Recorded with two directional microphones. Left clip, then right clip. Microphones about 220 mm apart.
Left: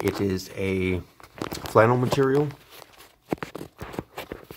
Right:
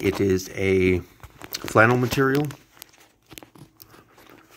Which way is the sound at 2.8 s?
50° right (ahead or behind).